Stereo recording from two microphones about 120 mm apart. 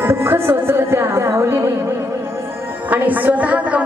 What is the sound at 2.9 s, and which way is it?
Speech, 15° right (ahead or behind).